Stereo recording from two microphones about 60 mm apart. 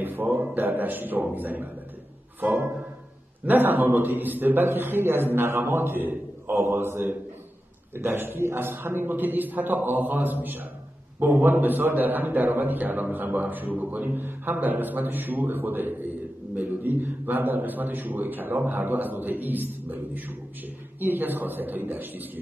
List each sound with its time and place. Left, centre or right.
0.0 s a man's voice: right